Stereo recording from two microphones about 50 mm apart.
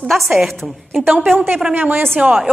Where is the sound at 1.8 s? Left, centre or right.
Right.